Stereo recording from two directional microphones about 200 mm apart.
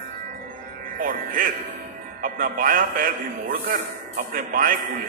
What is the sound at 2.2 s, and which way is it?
A man's voice, 45° right (ahead or behind).